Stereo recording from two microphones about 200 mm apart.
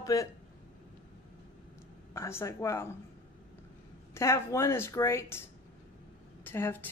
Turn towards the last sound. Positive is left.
turn(degrees=10)  # may be behind; listen again after turning